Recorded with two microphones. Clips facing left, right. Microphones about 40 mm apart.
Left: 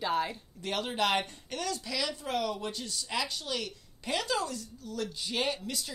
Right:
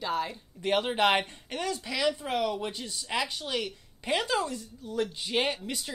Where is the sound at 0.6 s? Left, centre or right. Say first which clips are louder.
Right 5 dB; right.